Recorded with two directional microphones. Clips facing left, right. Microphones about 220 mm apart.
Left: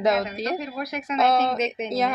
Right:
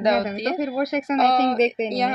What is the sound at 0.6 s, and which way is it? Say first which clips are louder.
Speech: right 8 dB; 45° right (ahead or behind).